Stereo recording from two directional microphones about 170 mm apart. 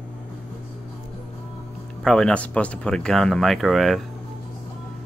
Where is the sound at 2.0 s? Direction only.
5° left (ahead or behind).